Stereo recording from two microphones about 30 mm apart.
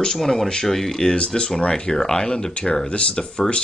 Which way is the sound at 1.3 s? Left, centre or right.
Left.